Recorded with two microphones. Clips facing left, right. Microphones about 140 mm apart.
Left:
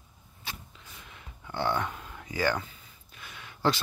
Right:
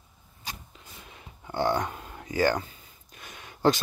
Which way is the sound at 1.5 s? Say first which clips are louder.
Right 3 dB; 40° right (ahead or behind).